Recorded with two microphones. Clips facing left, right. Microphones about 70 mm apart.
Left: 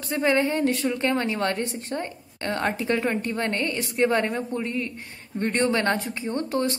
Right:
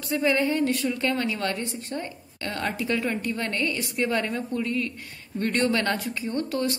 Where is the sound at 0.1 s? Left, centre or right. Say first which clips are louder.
Left 1 dB; left.